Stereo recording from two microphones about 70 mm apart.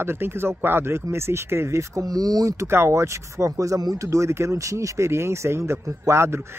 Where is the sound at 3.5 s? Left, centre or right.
Right.